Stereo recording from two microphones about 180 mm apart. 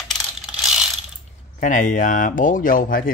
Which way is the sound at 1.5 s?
45° left (ahead or behind).